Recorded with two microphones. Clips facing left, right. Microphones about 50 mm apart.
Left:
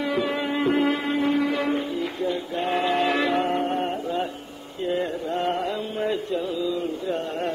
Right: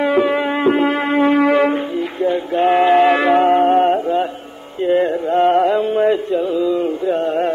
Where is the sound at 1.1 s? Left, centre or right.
Right.